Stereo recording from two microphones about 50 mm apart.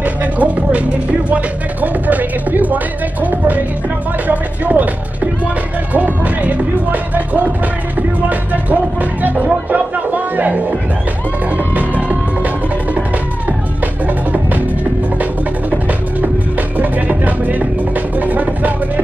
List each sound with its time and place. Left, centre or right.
0.0 s music: right
1.3 s speech: right
9.2 s speech: right
11.5 s music: right
16.7 s music: right